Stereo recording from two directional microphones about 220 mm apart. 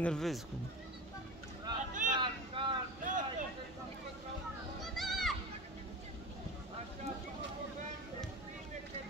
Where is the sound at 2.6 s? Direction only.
25° right (ahead or behind).